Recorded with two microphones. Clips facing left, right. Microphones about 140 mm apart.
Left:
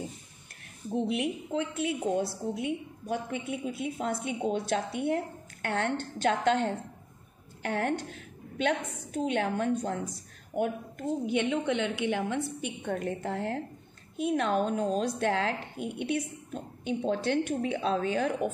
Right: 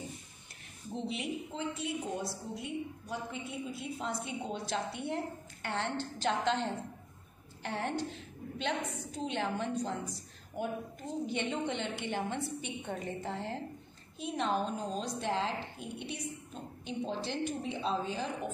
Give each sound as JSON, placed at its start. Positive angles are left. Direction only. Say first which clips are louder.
{"t": 0.9, "sound": "a woman's voice", "louder": "left 7 dB", "side_deg": 60}